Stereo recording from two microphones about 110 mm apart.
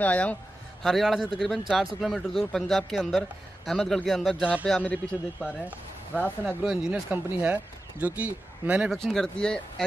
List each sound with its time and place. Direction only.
0.0 s speech: 15° left (ahead or behind)
0.8 s speech: centre (ahead or behind)
6.4 s speech: 5° right (ahead or behind)
8.9 s speech: 5° left (ahead or behind)